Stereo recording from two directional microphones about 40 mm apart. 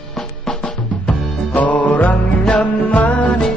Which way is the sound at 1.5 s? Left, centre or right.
Left.